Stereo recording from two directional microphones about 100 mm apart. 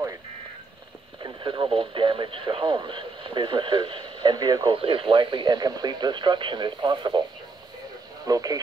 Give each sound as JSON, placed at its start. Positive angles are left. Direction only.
{"t": 1.2, "sound": "speech", "side_deg": -55}
{"t": 4.7, "sound": "speech", "side_deg": -60}
{"t": 8.3, "sound": "speech", "side_deg": -40}